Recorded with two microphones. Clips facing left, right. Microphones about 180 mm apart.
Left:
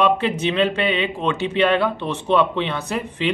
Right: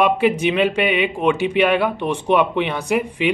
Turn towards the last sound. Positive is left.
turn(degrees=-10)  # may be behind; listen again after turning